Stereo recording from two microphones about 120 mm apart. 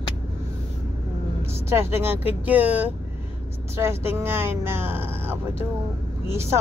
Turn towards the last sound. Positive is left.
turn(degrees=-20)  # may be behind; listen again after turning